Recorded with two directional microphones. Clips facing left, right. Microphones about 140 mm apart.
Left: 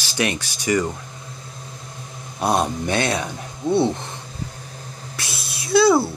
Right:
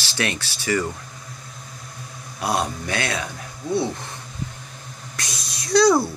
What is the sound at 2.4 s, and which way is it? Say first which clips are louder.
Speech: left 4 dB; 25° left (ahead or behind).